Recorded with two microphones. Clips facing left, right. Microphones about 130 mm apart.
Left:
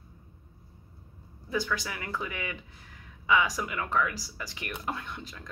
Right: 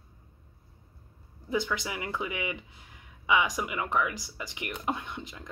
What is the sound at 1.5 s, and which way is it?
A woman's voice, 20° right (ahead or behind).